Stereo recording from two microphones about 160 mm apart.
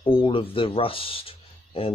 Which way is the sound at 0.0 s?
35° left (ahead or behind).